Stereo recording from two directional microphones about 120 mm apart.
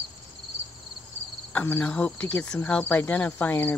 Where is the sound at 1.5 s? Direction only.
15° left (ahead or behind).